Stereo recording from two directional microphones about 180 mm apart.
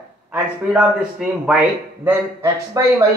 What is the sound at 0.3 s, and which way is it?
A man's voice, 5° right (ahead or behind).